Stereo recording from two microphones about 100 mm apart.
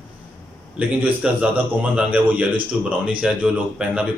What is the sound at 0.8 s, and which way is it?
A man's voice, 15° right (ahead or behind).